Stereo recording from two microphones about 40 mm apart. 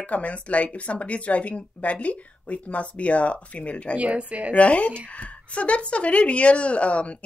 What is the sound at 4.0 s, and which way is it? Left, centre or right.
Speech, right.